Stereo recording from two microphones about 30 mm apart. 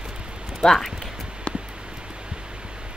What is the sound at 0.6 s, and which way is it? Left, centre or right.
Speech, centre.